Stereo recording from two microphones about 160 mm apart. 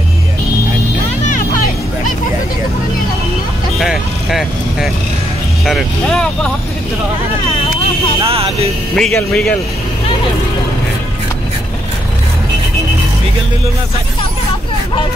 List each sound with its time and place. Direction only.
1.2 s music: 55° left (ahead or behind)
3.8 s vehicle: centre (ahead or behind)
5.7 s speech: centre (ahead or behind)
8.2 s vehicle: 35° right (ahead or behind)
8.9 s speech: 5° left (ahead or behind)